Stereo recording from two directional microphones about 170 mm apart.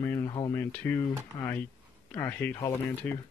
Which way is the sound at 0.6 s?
10° left (ahead or behind).